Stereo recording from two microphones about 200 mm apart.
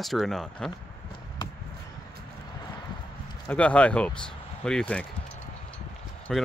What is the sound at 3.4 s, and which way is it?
Speech, 5° left (ahead or behind).